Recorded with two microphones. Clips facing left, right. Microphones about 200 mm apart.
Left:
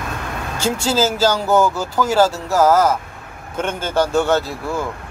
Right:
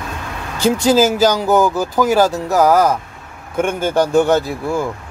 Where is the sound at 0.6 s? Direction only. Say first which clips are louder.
Right 6 dB; 15° right (ahead or behind).